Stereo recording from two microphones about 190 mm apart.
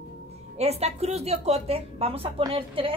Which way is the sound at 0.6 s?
35° right (ahead or behind).